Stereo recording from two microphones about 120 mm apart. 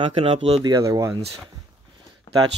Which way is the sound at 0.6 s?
30° right (ahead or behind).